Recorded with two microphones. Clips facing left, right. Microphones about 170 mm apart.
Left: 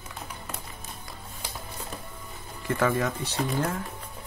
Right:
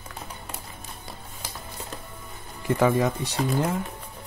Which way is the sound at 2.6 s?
15° right (ahead or behind).